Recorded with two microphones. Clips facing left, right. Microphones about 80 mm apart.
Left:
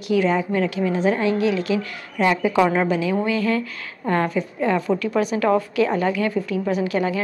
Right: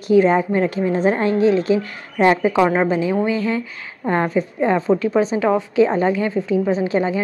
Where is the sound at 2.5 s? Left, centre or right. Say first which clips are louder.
Right 2 dB; right.